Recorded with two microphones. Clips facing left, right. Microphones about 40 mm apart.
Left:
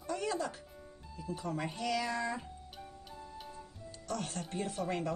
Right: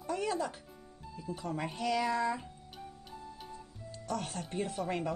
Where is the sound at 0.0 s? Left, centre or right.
Centre.